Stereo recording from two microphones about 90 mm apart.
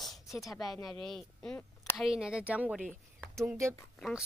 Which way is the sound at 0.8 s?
5° left (ahead or behind).